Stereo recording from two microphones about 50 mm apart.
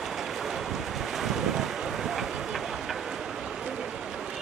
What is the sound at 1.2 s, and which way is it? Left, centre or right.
Wind noise, centre.